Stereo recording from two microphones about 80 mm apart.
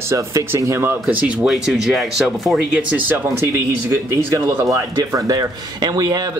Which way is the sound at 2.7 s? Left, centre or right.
Centre.